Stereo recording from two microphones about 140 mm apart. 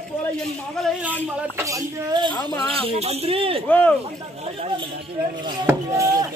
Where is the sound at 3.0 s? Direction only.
45° right (ahead or behind).